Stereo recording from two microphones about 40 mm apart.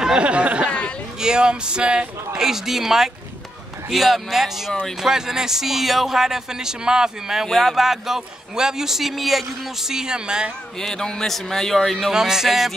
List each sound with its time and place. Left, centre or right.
0.0 s speech: right
0.7 s chatter: left
1.2 s a man's voice: right
2.4 s a man's voice: centre
7.4 s speech: centre
7.7 s a man's voice: centre
10.8 s a man's voice: centre
12.1 s a man's voice: centre